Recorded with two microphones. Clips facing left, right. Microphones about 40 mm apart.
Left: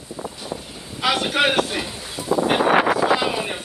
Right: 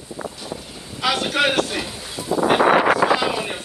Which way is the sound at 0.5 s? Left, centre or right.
Centre.